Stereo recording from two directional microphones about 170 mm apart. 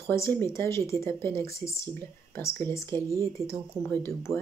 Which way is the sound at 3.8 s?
10° left (ahead or behind).